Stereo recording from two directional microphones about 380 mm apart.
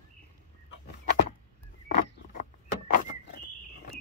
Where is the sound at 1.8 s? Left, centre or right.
Left.